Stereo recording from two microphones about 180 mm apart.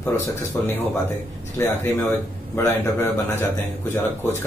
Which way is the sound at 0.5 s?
10° left (ahead or behind).